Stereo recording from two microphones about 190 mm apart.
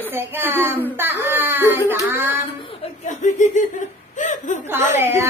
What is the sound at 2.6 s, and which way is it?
Laughter, 35° left (ahead or behind).